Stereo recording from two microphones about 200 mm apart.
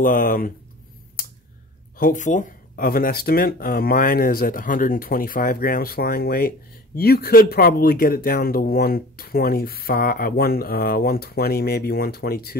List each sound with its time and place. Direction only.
0.0 s speech: 45° left (ahead or behind)
2.0 s speech: 40° left (ahead or behind)